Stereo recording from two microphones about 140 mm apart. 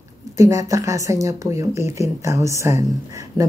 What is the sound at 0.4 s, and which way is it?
Speech, 20° right (ahead or behind).